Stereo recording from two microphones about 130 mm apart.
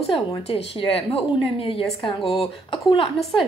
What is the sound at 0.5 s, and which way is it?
A woman's voice, 50° left (ahead or behind).